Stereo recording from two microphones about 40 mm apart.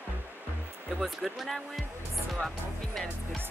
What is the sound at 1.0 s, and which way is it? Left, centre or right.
Speech, centre.